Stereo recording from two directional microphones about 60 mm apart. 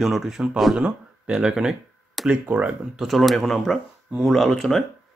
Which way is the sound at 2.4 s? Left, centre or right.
Right.